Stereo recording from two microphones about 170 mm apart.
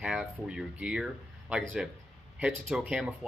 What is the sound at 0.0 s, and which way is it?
Speech, 5° right (ahead or behind).